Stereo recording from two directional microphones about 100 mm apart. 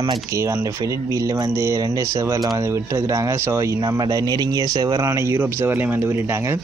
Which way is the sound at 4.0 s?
40° right (ahead or behind).